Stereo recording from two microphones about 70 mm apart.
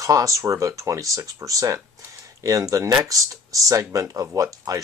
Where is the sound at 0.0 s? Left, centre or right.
Right.